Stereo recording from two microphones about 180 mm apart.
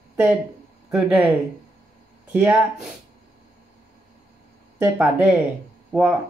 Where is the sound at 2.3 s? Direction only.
10° right (ahead or behind).